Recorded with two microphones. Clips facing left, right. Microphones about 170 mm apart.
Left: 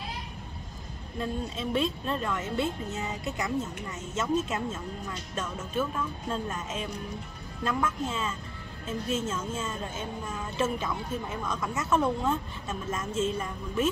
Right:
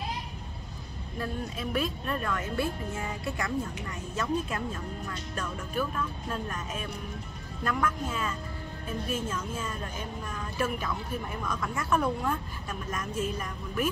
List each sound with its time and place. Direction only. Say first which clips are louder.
1.2 s speech: left 2 dB; 25° left (ahead or behind)